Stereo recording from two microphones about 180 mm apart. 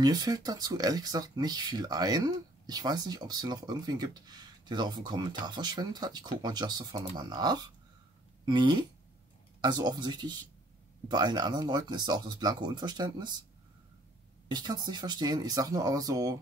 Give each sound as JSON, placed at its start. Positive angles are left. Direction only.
{"t": 0.0, "sound": "speech", "side_deg": -20}
{"t": 14.5, "sound": "speech", "side_deg": -25}